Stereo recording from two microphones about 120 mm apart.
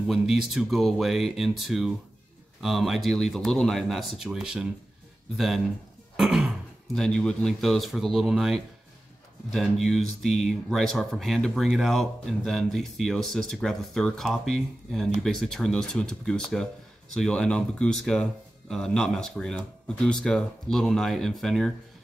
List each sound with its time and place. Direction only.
0.0 s speech: 5° right (ahead or behind)
6.1 s throat clearing: 5° right (ahead or behind)
7.0 s speech: 5° left (ahead or behind)